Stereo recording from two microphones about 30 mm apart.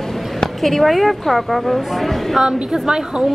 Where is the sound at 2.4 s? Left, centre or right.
Right.